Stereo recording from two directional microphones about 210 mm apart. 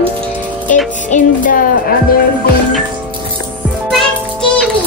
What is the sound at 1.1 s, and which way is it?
Music, 35° left (ahead or behind).